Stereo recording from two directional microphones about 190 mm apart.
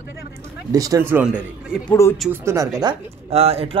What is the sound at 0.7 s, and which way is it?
Speech, 20° right (ahead or behind).